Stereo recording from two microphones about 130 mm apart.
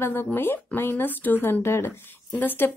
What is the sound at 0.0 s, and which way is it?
A woman's voice, 15° left (ahead or behind).